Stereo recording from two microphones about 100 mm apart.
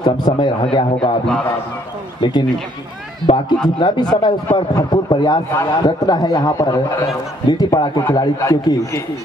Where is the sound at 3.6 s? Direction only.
50° left (ahead or behind).